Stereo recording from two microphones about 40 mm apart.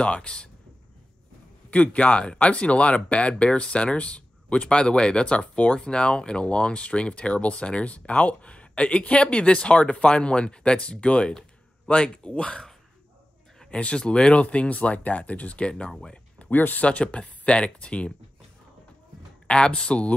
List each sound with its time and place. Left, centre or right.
0.0 s speech: left
1.7 s speech: left
13.7 s speech: left
16.3 s speech: left
16.8 s speech: left
19.4 s speech: left